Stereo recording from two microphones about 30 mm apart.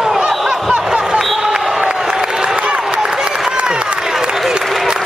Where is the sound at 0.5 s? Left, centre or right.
Right.